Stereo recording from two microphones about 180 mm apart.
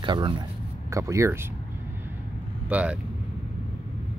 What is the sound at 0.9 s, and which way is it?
Speech, 15° right (ahead or behind).